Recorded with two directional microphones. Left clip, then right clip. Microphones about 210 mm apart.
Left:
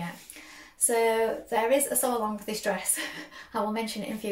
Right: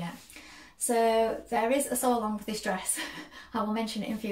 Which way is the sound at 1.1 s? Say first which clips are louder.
Even; centre (ahead or behind).